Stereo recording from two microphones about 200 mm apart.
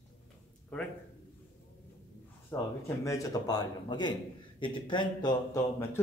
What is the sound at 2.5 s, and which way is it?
A man's voice, 10° left (ahead or behind).